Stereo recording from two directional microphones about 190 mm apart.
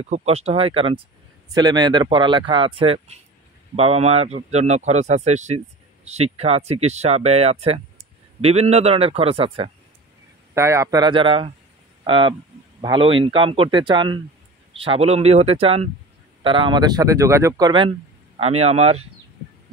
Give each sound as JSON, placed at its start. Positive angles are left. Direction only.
{"t": 0.0, "sound": "a man's voice", "side_deg": -35}
{"t": 10.5, "sound": "a man's voice", "side_deg": -15}